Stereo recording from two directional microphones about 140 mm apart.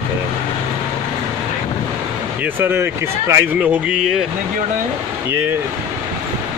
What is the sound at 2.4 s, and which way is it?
Speech, 15° right (ahead or behind).